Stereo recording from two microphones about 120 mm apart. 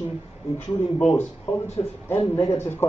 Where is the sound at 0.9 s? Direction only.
10° left (ahead or behind).